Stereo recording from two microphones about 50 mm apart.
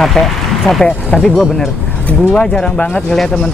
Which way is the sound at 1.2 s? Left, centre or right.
Centre.